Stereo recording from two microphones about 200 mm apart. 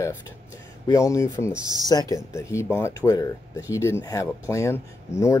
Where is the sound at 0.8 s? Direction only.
15° left (ahead or behind).